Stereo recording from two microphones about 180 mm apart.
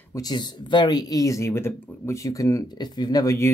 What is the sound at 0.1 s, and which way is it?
Speech, 20° left (ahead or behind).